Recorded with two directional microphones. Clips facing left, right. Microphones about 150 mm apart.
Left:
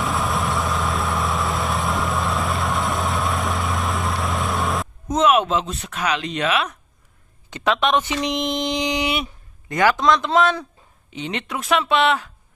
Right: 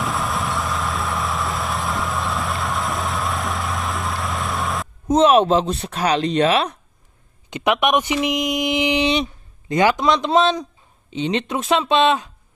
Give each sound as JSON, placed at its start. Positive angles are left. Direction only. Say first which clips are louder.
{"t": 0.0, "sound": "vehicle", "louder": "left 1 dB", "side_deg": 0}
{"t": 5.0, "sound": "speech", "louder": "right 4 dB", "side_deg": -30}
{"t": 7.4, "sound": "speech", "louder": "right 2 dB", "side_deg": -15}
{"t": 8.3, "sound": "mantra", "louder": "right 2 dB", "side_deg": 0}
{"t": 8.7, "sound": "speech", "louder": "right 4 dB", "side_deg": -15}